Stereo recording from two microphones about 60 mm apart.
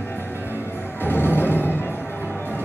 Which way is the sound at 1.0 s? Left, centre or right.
Left.